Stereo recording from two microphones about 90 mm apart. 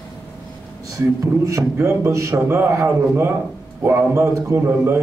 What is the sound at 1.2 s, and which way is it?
A man's voice, 35° right (ahead or behind).